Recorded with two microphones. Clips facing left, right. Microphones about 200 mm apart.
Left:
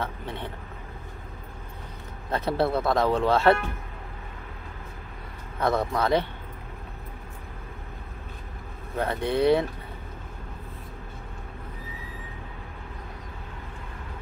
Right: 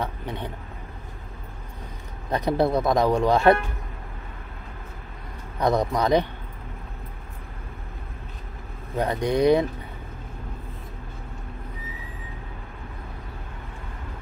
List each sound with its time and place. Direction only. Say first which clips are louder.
0.0 s speech: right 2 dB; 15° right (ahead or behind)
2.3 s speech: right 3 dB; 15° right (ahead or behind)
5.6 s speech: right 3 dB; 15° right (ahead or behind)
8.9 s speech: right 3 dB; 15° right (ahead or behind)